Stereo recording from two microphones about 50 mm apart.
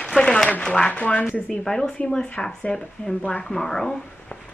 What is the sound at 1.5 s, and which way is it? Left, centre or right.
Speech, centre.